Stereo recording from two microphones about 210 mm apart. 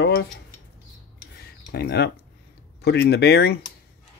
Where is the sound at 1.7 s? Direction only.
50° left (ahead or behind).